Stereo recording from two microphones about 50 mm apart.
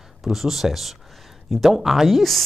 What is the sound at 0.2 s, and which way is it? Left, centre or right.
Speech, centre.